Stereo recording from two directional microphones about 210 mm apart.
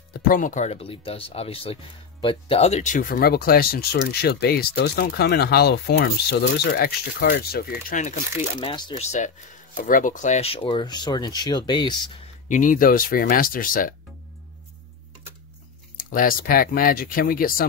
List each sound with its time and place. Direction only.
0.3 s speech: 40° left (ahead or behind)
7.9 s speech: 35° left (ahead or behind)
8.5 s speech: 20° left (ahead or behind)
12.4 s speech: 40° left (ahead or behind)
16.0 s speech: 40° left (ahead or behind)